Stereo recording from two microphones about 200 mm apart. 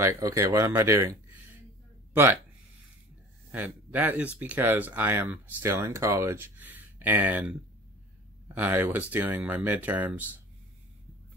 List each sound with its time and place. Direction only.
0.0 s speech: 15° right (ahead or behind)
3.5 s speech: 10° right (ahead or behind)
8.5 s speech: 10° right (ahead or behind)